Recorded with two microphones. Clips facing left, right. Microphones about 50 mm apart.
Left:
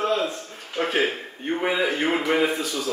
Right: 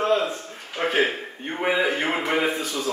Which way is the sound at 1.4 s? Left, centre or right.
Centre.